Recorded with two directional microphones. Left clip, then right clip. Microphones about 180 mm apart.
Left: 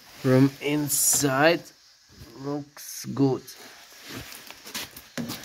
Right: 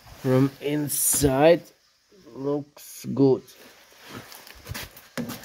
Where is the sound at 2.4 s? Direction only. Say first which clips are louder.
Right 5 dB; 25° right (ahead or behind).